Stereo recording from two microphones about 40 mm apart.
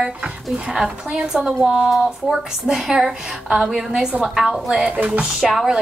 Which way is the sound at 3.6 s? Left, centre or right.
Centre.